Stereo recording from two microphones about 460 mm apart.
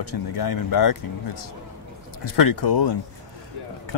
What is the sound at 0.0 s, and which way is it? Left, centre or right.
Speech, left.